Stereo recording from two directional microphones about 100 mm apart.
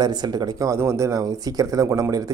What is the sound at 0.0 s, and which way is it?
A man's voice, 45° right (ahead or behind).